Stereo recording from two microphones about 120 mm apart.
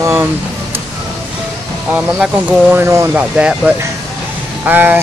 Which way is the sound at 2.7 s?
20° right (ahead or behind).